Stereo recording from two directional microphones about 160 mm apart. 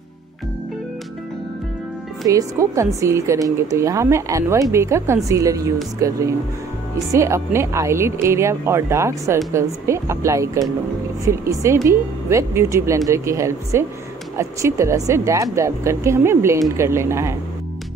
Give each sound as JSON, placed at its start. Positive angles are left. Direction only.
{"t": 2.2, "sound": "a woman's voice", "side_deg": -20}